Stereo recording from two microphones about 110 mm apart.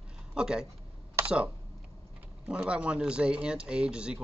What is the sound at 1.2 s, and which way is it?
Computer keyboard, 25° right (ahead or behind).